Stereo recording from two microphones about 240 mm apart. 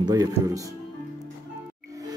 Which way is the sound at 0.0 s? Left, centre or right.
Centre.